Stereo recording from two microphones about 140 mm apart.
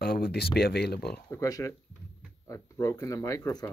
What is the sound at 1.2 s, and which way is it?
Speech, 25° left (ahead or behind).